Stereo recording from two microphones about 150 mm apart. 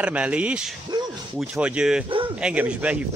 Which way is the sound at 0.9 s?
25° right (ahead or behind).